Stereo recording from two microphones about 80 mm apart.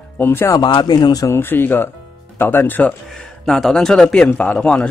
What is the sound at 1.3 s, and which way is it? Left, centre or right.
Speech, left.